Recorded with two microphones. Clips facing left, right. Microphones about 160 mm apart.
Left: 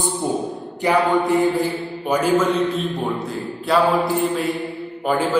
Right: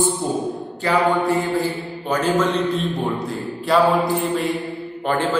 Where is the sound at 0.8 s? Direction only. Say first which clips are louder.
Left 2 dB; 15° left (ahead or behind).